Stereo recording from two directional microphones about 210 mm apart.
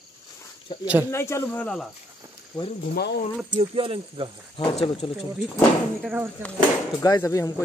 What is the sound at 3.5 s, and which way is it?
Speech, 25° right (ahead or behind).